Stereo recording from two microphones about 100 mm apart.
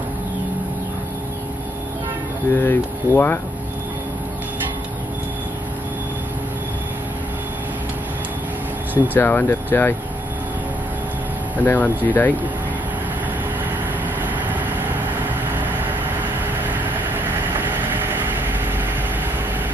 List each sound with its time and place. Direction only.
2.5 s speech: 20° left (ahead or behind)
9.1 s speech: 20° left (ahead or behind)
11.6 s speech: 20° left (ahead or behind)
17.6 s vehicle: 20° right (ahead or behind)